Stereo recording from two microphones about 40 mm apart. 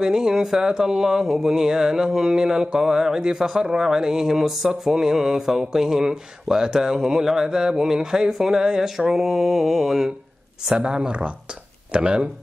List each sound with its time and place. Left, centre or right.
0.0 s mantra: centre
9.1 s mantra: centre
10.7 s speech: right